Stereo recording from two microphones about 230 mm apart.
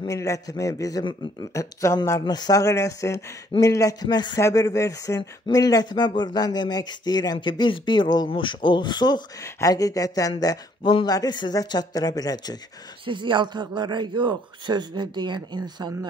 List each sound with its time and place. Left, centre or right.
0.0 s a man's voice: centre
13.0 s a man's voice: right